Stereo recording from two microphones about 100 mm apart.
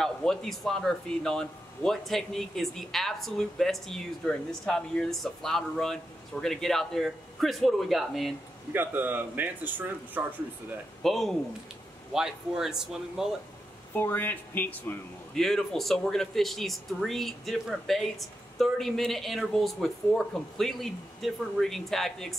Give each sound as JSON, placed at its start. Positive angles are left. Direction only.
{"t": 0.0, "sound": "speech", "side_deg": 5}
{"t": 8.7, "sound": "speech", "side_deg": -20}
{"t": 11.0, "sound": "a man's voice", "side_deg": 0}
{"t": 13.9, "sound": "speech", "side_deg": 20}
{"t": 15.3, "sound": "speech", "side_deg": 5}